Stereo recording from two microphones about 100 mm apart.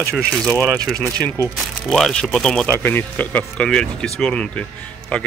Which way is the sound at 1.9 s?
5° left (ahead or behind).